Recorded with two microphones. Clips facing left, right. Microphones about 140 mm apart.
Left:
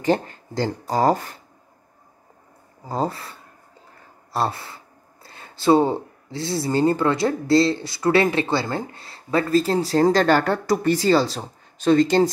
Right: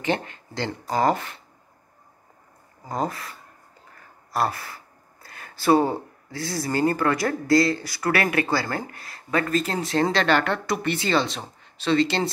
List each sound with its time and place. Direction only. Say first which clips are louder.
0.0 s speech: left 5 dB; 35° left (ahead or behind)
2.9 s speech: left 2 dB; 30° left (ahead or behind)
4.3 s gasp: left 1 dB; 25° left (ahead or behind)
6.3 s speech: left 4 dB; 25° left (ahead or behind); by 12.3 s 45° left (ahead or behind)